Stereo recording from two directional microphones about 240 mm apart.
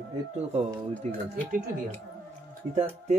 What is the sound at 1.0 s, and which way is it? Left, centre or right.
Speech, right.